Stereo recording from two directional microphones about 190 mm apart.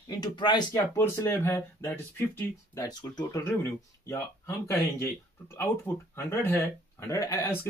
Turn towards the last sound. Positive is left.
turn(degrees=15)  # may be behind; listen again after turning